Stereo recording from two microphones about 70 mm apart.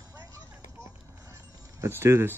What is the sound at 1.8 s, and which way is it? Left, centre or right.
Speech, right.